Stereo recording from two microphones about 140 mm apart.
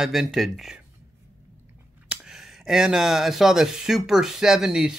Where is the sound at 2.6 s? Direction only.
5° right (ahead or behind).